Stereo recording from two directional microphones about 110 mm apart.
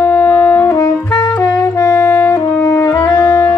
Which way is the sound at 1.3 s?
25° left (ahead or behind).